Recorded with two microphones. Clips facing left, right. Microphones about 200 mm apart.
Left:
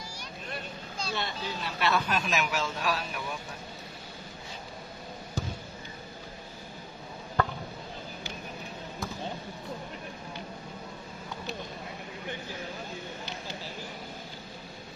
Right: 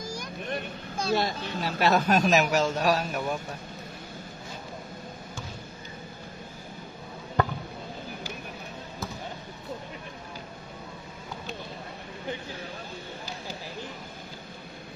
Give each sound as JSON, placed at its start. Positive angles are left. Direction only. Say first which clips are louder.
{"t": 0.0, "sound": "vehicle", "louder": "right 8 dB", "side_deg": -45}
{"t": 0.9, "sound": "a sound", "louder": "right 9 dB", "side_deg": -55}
{"t": 1.2, "sound": "a man's voice", "louder": "right 5 dB", "side_deg": -40}